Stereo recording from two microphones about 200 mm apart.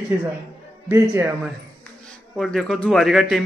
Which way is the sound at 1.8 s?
5° left (ahead or behind).